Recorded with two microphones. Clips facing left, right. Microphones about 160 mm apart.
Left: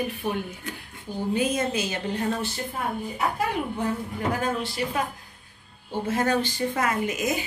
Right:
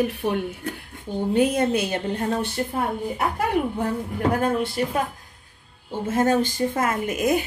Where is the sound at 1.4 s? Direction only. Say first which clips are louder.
Right 6 dB; 65° right (ahead or behind).